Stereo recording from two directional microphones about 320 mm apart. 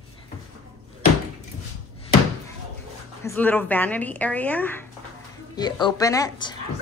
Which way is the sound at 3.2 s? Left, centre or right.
Centre.